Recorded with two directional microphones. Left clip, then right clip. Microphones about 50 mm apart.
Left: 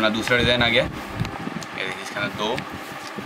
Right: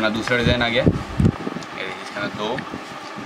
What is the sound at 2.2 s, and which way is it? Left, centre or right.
Speech, centre.